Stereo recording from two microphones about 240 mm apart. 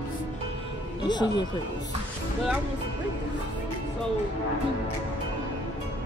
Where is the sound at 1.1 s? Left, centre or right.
Centre.